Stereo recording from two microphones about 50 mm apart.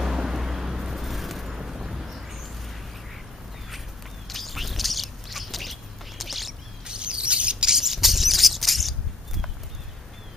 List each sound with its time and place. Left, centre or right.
0.0 s vehicle: centre
4.3 s bird: centre
6.9 s bird: centre
7.7 s a sound: centre